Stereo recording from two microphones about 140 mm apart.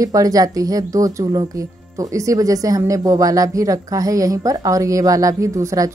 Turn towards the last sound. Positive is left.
turn(degrees=-25)  # may be behind; listen again after turning